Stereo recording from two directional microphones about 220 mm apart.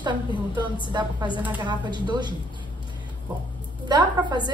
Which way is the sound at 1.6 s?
20° right (ahead or behind).